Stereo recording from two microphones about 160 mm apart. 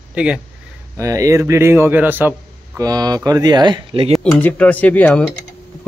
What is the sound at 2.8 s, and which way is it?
Speech, 25° right (ahead or behind).